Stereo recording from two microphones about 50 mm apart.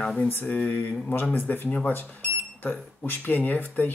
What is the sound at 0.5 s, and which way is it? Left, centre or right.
Speech, left.